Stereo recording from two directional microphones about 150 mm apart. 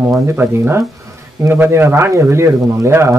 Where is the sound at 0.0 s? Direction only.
15° right (ahead or behind).